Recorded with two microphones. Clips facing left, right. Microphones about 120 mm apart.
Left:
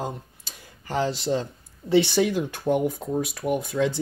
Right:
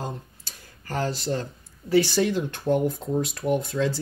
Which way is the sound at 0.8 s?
20° left (ahead or behind).